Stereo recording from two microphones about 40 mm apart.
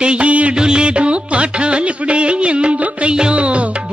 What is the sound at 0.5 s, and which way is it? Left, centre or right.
Music, right.